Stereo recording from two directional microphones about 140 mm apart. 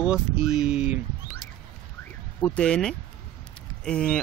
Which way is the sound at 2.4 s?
10° left (ahead or behind).